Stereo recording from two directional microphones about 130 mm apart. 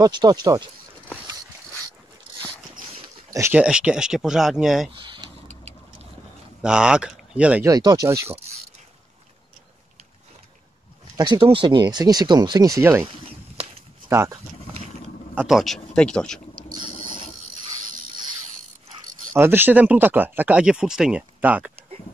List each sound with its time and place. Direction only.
0.0 s speech: 30° right (ahead or behind)
3.5 s speech: 10° right (ahead or behind)
4.9 s a sound: 40° right (ahead or behind)
6.6 s speech: 5° right (ahead or behind)
7.6 s speech: 30° right (ahead or behind)
11.1 s speech: 35° right (ahead or behind)
14.0 s speech: 20° right (ahead or behind)
15.3 s speech: centre (ahead or behind)
19.3 s speech: 15° right (ahead or behind)